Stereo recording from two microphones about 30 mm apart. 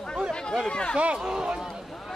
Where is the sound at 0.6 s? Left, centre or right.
Left.